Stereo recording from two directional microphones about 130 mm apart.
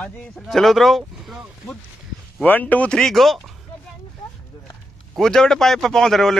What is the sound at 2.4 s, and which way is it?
Speech, 10° left (ahead or behind).